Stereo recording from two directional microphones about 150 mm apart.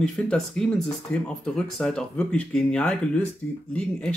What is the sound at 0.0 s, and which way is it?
Speech, 5° left (ahead or behind).